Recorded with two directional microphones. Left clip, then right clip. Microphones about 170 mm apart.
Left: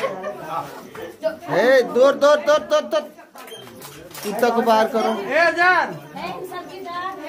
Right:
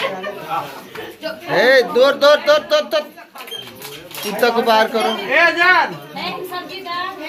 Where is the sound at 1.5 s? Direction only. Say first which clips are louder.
Right 3 dB; 15° left (ahead or behind).